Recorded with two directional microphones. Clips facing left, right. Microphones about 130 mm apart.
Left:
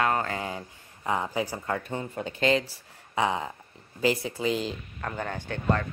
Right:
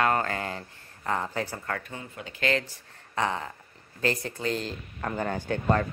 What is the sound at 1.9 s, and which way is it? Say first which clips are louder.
Speech: left 7 dB; 35° left (ahead or behind).